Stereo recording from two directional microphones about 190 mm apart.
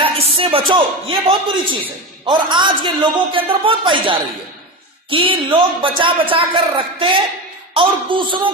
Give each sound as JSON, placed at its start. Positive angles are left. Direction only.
{"t": 0.0, "sound": "a man's voice", "side_deg": -30}